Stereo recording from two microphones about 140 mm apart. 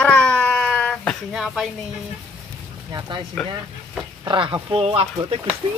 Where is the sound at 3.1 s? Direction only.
35° right (ahead or behind).